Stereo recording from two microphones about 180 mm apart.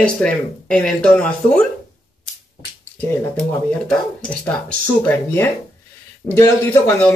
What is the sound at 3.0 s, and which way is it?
Speech, 10° left (ahead or behind).